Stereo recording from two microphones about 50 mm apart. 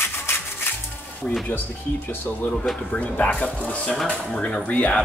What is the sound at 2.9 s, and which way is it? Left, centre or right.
Speech, left.